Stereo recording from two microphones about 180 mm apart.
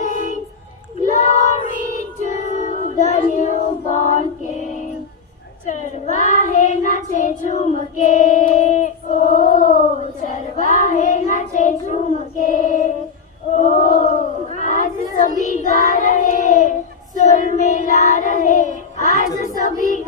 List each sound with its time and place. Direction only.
1.0 s child singing: 40° left (ahead or behind)
5.7 s child singing: 40° left (ahead or behind)
13.6 s chant: 45° left (ahead or behind)
15.4 s child singing: 40° left (ahead or behind)